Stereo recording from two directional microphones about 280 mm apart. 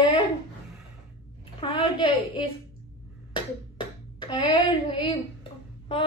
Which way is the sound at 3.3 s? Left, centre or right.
Centre.